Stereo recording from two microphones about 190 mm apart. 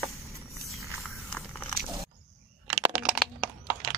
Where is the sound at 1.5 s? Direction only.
5° left (ahead or behind).